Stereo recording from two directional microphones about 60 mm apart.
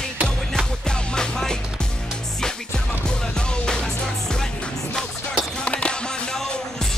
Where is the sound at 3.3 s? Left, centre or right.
Centre.